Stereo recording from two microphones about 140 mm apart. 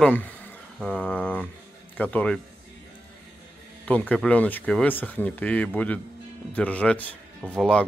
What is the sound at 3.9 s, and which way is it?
Speech, 10° left (ahead or behind).